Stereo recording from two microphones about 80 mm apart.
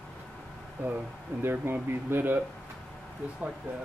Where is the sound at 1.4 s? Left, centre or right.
Right.